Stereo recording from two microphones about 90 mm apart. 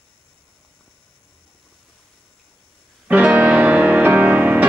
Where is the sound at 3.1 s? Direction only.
15° right (ahead or behind).